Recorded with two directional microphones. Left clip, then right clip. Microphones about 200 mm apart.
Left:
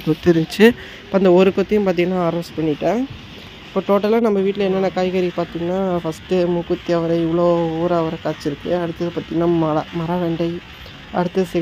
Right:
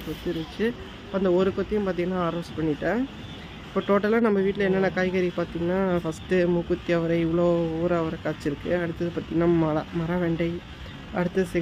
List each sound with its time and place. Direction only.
0.6 s speech: 50° left (ahead or behind)
1.1 s speech: 35° left (ahead or behind)
3.7 s speech: 15° left (ahead or behind)